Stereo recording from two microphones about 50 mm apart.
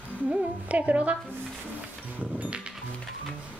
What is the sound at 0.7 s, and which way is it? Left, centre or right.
Speech, right.